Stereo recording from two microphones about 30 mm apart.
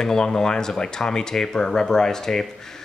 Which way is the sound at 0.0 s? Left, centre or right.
Left.